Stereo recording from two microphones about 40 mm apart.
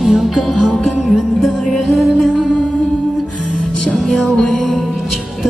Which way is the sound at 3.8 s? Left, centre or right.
Centre.